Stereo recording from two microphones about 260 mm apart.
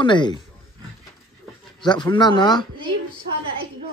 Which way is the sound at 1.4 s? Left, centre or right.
Centre.